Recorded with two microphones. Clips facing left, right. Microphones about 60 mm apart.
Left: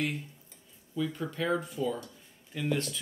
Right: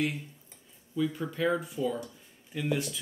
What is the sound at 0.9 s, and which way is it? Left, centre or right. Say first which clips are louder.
Speech: right 2 dB; centre.